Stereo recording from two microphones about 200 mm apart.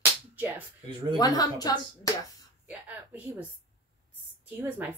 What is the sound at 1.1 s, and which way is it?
A woman's voice, 20° left (ahead or behind).